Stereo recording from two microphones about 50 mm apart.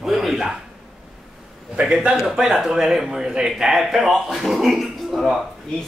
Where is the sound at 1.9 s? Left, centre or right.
Centre.